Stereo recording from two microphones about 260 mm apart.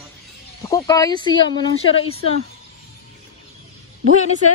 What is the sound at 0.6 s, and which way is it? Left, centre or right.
Speech, centre.